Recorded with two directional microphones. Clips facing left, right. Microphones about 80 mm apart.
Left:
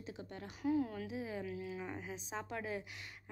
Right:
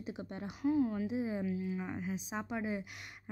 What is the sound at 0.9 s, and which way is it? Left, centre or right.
Speech, right.